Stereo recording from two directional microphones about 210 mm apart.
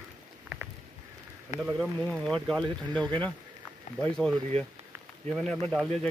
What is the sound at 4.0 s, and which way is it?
Speech, 5° left (ahead or behind).